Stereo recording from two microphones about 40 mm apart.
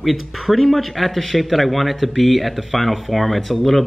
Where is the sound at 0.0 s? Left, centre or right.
Centre.